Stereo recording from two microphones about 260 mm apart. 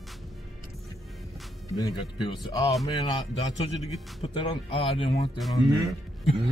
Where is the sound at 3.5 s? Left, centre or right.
Left.